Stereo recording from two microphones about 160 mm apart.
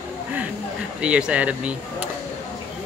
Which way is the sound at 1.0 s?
5° right (ahead or behind).